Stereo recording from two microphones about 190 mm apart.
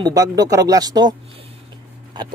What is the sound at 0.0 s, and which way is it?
Speech, 20° right (ahead or behind).